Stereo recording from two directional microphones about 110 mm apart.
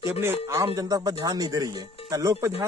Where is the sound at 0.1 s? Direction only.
25° right (ahead or behind).